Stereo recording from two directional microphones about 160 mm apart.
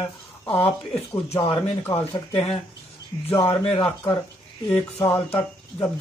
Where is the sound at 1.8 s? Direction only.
10° left (ahead or behind).